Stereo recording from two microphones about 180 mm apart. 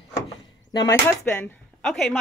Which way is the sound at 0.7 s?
25° left (ahead or behind).